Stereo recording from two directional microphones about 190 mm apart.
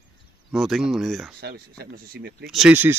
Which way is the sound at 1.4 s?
55° right (ahead or behind).